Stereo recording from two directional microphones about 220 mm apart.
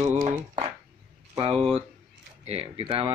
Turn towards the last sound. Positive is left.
turn(degrees=-25)  # may be behind; listen again after turning